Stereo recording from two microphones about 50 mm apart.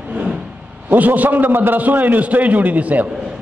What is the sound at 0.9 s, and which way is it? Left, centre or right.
A man's voice, right.